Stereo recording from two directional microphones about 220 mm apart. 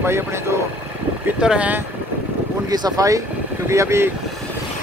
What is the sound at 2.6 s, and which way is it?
Speech, 15° right (ahead or behind).